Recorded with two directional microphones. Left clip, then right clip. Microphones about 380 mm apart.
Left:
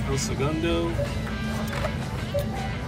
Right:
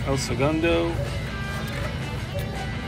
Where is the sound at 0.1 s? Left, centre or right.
Centre.